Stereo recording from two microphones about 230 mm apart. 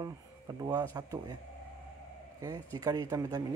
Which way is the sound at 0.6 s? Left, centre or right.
Centre.